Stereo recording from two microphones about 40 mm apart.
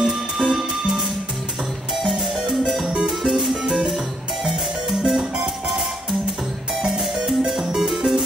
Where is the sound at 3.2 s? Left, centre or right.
Centre.